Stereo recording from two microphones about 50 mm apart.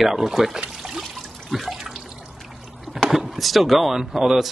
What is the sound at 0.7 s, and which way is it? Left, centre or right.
Pour, centre.